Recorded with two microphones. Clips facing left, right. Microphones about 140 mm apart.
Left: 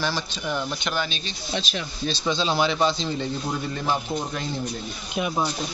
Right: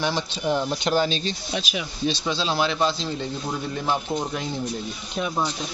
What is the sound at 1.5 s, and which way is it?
Speech, 10° right (ahead or behind).